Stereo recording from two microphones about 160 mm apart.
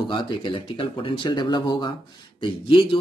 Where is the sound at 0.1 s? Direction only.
30° left (ahead or behind).